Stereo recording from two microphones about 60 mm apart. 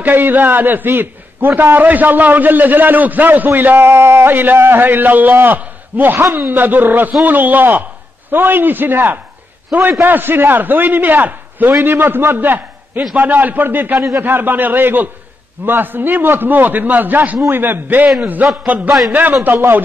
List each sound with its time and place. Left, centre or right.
0.0 s a man's voice: right
18.9 s a man's voice: centre
19.4 s a man's voice: right